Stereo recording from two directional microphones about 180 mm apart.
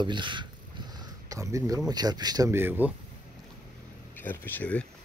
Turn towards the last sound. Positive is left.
turn(degrees=10)  # may be behind; listen again after turning